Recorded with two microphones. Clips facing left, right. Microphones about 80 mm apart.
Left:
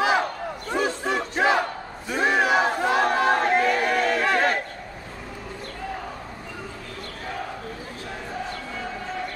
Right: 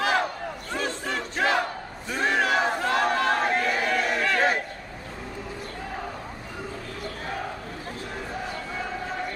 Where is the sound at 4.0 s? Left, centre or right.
Centre.